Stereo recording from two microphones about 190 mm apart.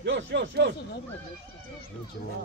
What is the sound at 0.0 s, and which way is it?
Speech, 65° right (ahead or behind).